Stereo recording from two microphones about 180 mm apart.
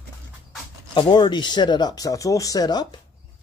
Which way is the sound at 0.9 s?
25° left (ahead or behind).